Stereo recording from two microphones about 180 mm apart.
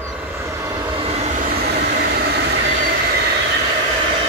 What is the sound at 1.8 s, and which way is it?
Train, 65° right (ahead or behind).